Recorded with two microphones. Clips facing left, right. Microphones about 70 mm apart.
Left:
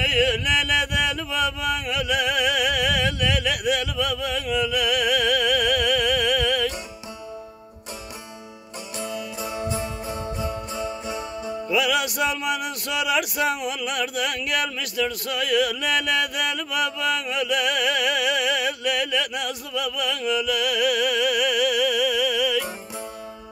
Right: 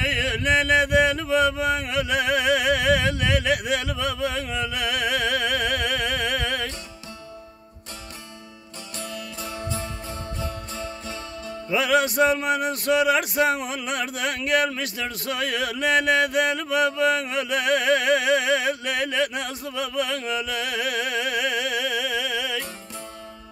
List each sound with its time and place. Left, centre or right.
0.0 s mantra: right
9.0 s music: centre
11.7 s music: right